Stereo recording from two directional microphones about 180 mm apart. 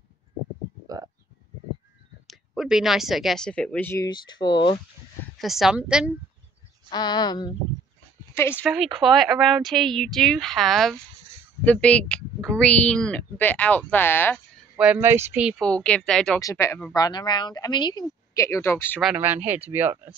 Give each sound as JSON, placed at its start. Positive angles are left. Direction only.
{"t": 0.8, "sound": "speech", "side_deg": -20}
{"t": 2.2, "sound": "speech", "side_deg": 0}
{"t": 5.4, "sound": "speech", "side_deg": 0}
{"t": 6.9, "sound": "speech", "side_deg": 25}
{"t": 8.4, "sound": "a woman's voice", "side_deg": 10}
{"t": 8.6, "sound": "a woman's voice", "side_deg": -5}
{"t": 14.8, "sound": "speech", "side_deg": -10}
{"t": 15.6, "sound": "speech", "side_deg": 5}
{"t": 16.3, "sound": "speech", "side_deg": 15}
{"t": 19.1, "sound": "speech", "side_deg": -10}